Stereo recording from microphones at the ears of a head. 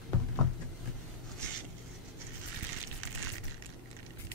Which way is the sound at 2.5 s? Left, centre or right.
Right.